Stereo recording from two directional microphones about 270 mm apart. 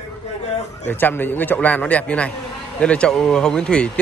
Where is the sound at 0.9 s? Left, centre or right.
Centre.